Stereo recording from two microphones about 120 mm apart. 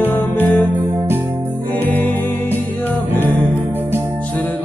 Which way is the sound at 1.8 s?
15° left (ahead or behind).